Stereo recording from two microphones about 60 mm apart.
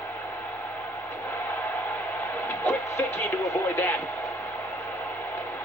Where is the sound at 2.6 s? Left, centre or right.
Left.